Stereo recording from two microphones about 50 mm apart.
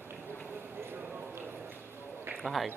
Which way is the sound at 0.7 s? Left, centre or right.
Right.